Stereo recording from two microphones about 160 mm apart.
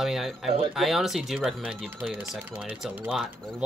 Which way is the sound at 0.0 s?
Centre (ahead or behind).